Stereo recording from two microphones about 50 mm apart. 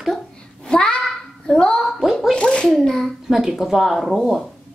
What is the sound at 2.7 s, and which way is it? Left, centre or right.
Child singing, centre.